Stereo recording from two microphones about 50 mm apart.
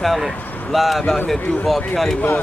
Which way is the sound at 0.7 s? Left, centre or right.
Centre.